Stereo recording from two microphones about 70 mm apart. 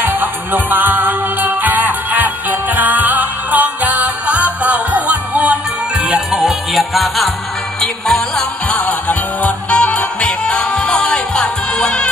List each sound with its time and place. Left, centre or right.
0.0 s music: right
6.4 s music: centre
9.4 s music: centre